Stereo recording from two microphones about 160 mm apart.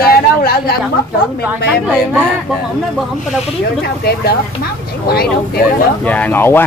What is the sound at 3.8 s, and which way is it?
Speech, 75° left (ahead or behind).